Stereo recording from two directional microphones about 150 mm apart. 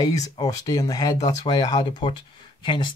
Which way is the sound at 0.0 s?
25° left (ahead or behind).